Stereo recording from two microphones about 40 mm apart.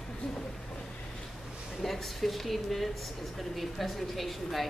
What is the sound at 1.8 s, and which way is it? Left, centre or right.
A woman's voice, centre.